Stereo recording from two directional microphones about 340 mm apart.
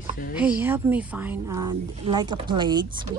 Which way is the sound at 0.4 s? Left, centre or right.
Centre.